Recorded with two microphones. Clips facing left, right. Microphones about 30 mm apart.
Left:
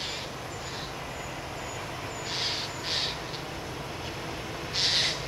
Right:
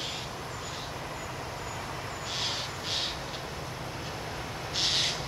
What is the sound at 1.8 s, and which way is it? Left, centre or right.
Vehicle, centre.